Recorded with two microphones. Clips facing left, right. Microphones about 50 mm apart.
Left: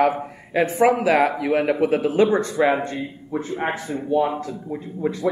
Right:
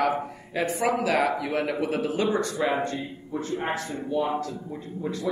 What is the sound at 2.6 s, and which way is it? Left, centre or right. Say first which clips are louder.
A man's voice: left 6 dB; centre.